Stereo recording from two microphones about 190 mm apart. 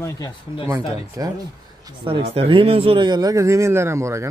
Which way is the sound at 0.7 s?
20° right (ahead or behind).